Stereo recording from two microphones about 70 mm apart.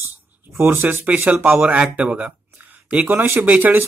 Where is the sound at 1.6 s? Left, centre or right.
Centre.